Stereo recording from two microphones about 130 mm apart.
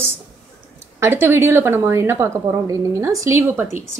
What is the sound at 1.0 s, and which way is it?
A woman's voice, 20° right (ahead or behind).